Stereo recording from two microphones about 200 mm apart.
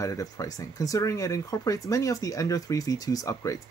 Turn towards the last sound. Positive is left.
turn(degrees=15)  # may be behind; listen again after turning